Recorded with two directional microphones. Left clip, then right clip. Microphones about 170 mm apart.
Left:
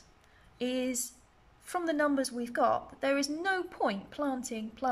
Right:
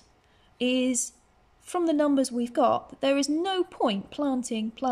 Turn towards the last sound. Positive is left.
turn(degrees=-20)  # may be behind; listen again after turning